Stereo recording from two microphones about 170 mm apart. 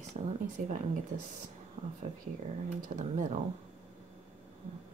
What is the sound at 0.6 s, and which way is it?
Speech, 50° right (ahead or behind).